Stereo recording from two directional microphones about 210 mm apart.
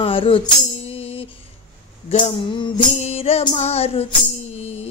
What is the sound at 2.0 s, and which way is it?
Music, 25° left (ahead or behind).